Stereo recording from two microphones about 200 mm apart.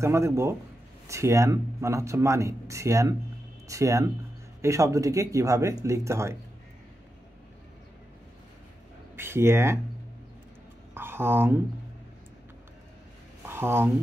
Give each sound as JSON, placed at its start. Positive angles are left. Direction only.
{"t": 0.0, "sound": "speech", "side_deg": -15}
{"t": 9.1, "sound": "speech", "side_deg": -10}
{"t": 11.0, "sound": "speech", "side_deg": -10}
{"t": 13.5, "sound": "speech", "side_deg": -10}